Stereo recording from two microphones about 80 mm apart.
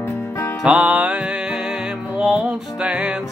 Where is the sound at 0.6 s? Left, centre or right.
Centre.